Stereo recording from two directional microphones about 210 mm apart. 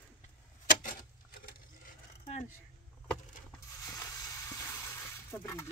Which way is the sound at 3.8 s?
15° left (ahead or behind).